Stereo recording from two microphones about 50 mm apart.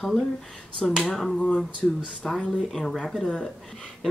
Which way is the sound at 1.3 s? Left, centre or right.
Left.